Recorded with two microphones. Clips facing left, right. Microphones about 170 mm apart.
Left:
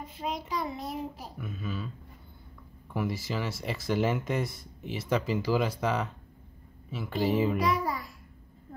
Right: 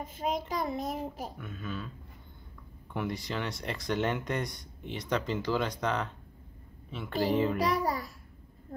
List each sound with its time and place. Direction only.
0.0 s a child's voice: 45° right (ahead or behind)
1.4 s speech: 5° left (ahead or behind)
2.9 s speech: 5° left (ahead or behind)
7.5 s a child's voice: 35° right (ahead or behind)